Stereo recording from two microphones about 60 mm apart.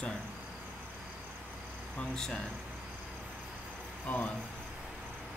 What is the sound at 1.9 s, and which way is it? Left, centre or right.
Speech, centre.